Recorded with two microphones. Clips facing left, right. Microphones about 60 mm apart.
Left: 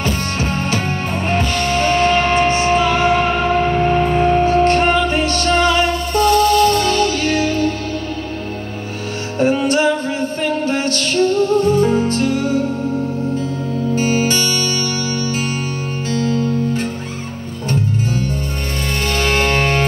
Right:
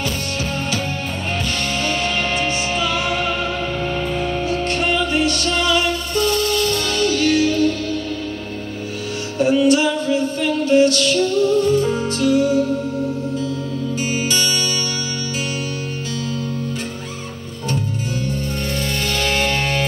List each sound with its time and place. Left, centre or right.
0.0 s music: left
9.4 s music: left
13.9 s music: left
16.1 s music: left
19.1 s music: left